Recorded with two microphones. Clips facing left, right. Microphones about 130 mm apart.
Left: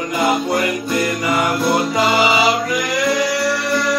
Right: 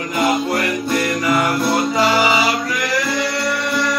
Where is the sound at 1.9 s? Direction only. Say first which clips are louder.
Even; 20° left (ahead or behind).